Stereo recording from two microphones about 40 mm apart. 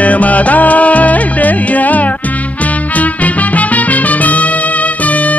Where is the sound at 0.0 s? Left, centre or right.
Left.